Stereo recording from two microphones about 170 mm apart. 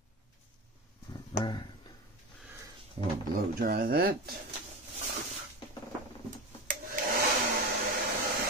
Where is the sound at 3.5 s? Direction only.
60° right (ahead or behind).